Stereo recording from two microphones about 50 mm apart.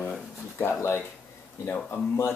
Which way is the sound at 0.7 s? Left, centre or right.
Left.